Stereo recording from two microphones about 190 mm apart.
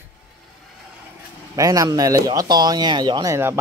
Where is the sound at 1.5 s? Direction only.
20° right (ahead or behind).